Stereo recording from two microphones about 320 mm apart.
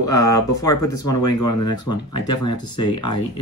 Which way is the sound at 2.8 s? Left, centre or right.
Left.